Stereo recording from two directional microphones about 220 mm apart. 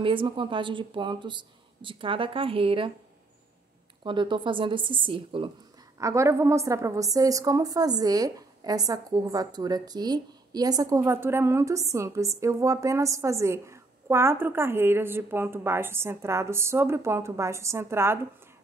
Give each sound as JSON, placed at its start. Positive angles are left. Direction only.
{"t": 0.0, "sound": "speech", "side_deg": -25}
{"t": 4.0, "sound": "a woman's voice", "side_deg": -20}